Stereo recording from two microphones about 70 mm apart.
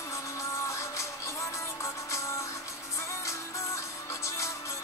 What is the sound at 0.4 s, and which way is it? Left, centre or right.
Music, left.